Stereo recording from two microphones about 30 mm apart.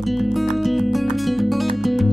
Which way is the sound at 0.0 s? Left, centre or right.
Centre.